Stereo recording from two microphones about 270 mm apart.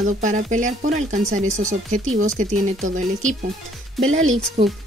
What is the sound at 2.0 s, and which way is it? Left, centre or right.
Speech, right.